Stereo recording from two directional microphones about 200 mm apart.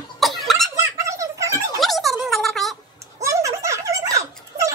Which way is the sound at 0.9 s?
15° right (ahead or behind).